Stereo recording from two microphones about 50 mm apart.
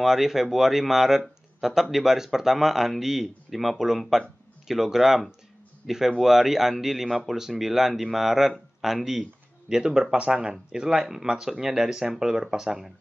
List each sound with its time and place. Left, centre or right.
0.0 s speech: centre